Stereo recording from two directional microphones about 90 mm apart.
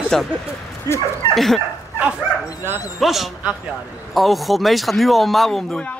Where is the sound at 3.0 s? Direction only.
Centre (ahead or behind).